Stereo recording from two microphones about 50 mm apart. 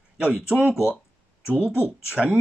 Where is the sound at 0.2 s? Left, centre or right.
Right.